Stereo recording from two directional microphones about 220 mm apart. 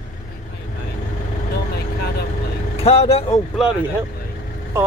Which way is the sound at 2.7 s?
25° left (ahead or behind).